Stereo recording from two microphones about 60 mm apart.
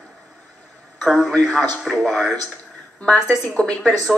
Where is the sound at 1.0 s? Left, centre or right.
Centre.